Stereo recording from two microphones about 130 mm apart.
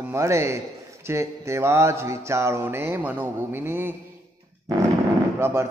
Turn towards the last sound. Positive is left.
turn(degrees=-20)  # may be behind; listen again after turning